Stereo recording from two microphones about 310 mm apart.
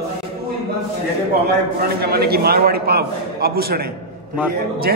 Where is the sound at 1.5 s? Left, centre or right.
Right.